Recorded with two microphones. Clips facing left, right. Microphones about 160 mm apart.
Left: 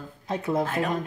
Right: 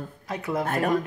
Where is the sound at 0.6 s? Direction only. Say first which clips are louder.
Right 1 dB; 55° right (ahead or behind).